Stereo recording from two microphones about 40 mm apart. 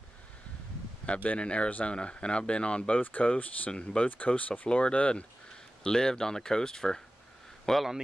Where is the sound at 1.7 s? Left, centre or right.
Left.